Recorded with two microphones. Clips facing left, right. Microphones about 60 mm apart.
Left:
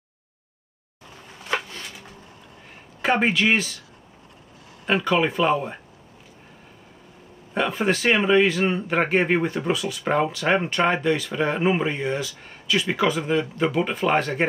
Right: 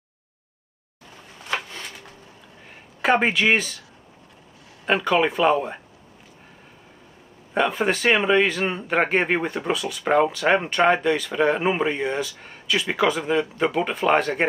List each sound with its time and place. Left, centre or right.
3.0 s speech: centre
4.8 s speech: centre
7.5 s speech: centre